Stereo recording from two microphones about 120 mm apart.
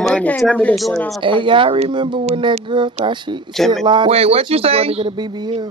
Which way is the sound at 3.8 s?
40° right (ahead or behind).